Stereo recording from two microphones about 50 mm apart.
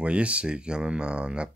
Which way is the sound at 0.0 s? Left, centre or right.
Right.